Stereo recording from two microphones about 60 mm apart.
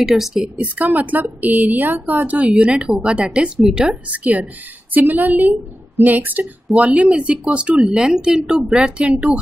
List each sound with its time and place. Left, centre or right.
0.0 s speech: centre
0.6 s a woman's voice: right; by 4.0 s centre
4.1 s a woman's voice: right